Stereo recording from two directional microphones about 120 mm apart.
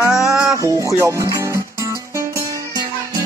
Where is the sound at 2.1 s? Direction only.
25° right (ahead or behind).